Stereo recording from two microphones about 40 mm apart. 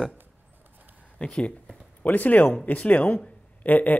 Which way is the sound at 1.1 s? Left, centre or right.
Left.